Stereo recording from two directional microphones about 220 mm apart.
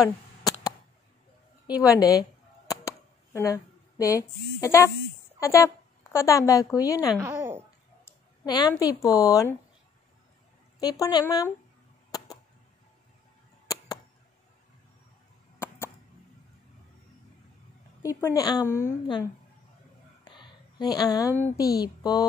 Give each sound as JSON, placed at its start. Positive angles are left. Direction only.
{"t": 0.0, "sound": "a sound", "side_deg": 15}
{"t": 1.7, "sound": "a woman's voice", "side_deg": 15}
{"t": 2.7, "sound": "a sound", "side_deg": 15}
{"t": 6.1, "sound": "a woman's voice", "side_deg": 15}
{"t": 7.2, "sound": "speech", "side_deg": -10}
{"t": 8.5, "sound": "a woman's voice", "side_deg": 20}
{"t": 10.8, "sound": "a woman's voice", "side_deg": 20}
{"t": 18.0, "sound": "a woman's voice", "side_deg": 15}
{"t": 20.2, "sound": "a sound", "side_deg": 20}
{"t": 21.5, "sound": "a woman's voice", "side_deg": 15}